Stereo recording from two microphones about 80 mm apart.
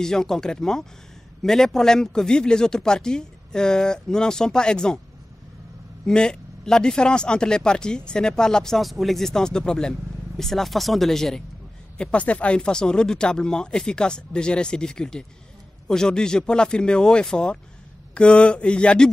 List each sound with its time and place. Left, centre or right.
0.0 s speech: centre
6.0 s speech: centre
12.0 s speech: centre